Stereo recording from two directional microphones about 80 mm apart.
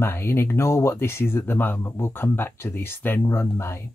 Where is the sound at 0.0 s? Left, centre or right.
Left.